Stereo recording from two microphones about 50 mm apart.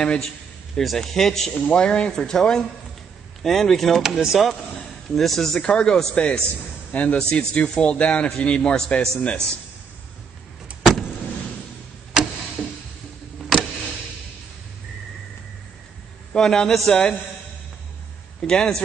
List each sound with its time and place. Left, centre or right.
0.0 s speech: centre
1.7 s speech: centre
4.0 s speech: centre
4.7 s a man's voice: centre
5.6 s speech: centre
6.9 s a man's voice: left
12.2 s tick-tock: centre
13.4 s a sound: centre
16.3 s speech: centre
18.4 s speech: centre